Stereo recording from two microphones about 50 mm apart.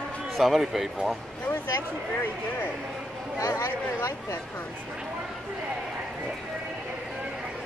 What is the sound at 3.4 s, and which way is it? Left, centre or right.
Speech, left.